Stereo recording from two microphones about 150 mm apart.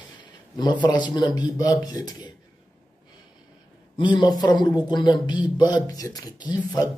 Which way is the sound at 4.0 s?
30° left (ahead or behind).